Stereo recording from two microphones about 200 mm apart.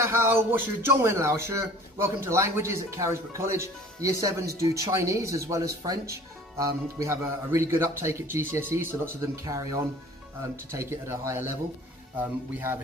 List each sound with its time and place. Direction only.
0.0 s speech: 15° right (ahead or behind)